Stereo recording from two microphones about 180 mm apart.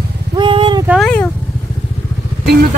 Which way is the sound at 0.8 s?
5° left (ahead or behind).